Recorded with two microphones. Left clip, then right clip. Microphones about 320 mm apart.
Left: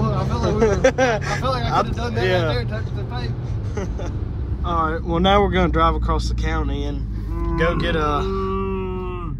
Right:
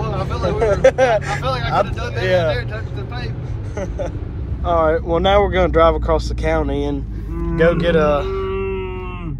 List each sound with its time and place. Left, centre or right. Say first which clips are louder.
0.4 s speech: right 3 dB; centre
8.4 s music: right 2 dB; centre